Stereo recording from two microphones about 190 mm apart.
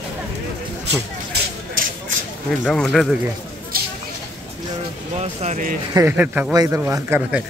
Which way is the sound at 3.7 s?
50° right (ahead or behind).